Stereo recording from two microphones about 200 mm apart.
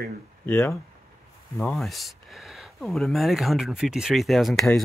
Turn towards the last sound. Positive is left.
turn(degrees=0)  # may be behind; listen again after turning